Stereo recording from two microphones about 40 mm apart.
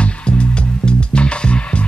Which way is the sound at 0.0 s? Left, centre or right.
Left.